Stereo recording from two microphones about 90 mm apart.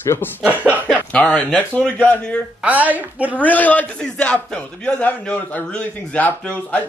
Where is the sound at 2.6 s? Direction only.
15° right (ahead or behind).